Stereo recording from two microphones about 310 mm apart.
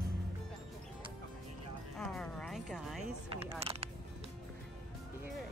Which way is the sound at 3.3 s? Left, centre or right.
Centre.